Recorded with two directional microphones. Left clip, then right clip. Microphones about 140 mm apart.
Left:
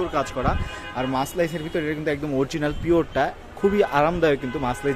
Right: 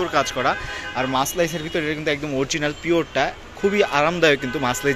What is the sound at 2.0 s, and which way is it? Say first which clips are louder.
Speech: right 1 dB; 20° left (ahead or behind).